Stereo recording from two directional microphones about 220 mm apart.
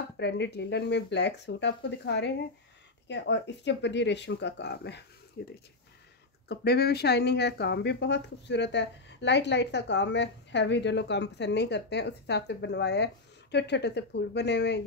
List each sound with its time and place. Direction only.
0.2 s speech: 50° left (ahead or behind)
6.5 s speech: 45° left (ahead or behind)